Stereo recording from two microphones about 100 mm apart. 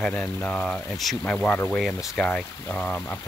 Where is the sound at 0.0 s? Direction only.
5° left (ahead or behind).